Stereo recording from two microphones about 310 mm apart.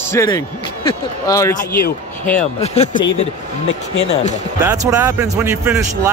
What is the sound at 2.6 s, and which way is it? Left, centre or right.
Speech, left.